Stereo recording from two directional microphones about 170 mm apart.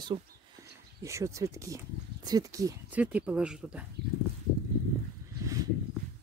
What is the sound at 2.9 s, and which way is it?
Speech, 10° right (ahead or behind).